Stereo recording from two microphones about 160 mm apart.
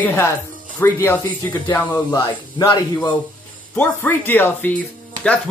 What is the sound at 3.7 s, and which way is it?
Speech, 10° left (ahead or behind).